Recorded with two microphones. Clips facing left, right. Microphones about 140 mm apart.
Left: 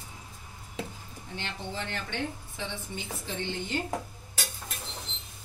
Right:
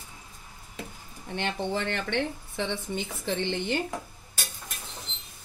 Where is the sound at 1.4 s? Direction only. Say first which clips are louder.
Right 8 dB; 65° right (ahead or behind).